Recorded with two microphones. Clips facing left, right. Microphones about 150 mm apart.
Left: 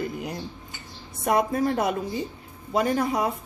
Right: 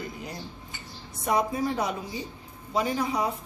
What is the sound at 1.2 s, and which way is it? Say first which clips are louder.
Speech: left 3 dB; 55° left (ahead or behind).